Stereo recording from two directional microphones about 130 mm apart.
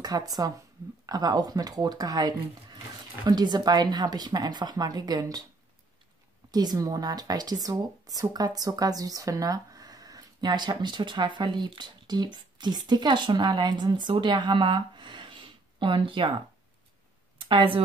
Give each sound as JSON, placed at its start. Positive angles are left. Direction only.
{"t": 0.0, "sound": "speech", "side_deg": -30}
{"t": 6.5, "sound": "speech", "side_deg": -30}
{"t": 17.4, "sound": "speech", "side_deg": -40}